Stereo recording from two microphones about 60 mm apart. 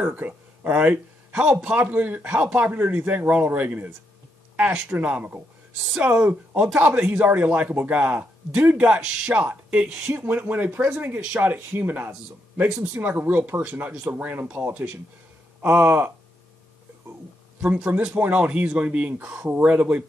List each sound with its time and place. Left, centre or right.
0.0 s speech: right
1.8 s speech: right
10.1 s speech: right
17.6 s speech: right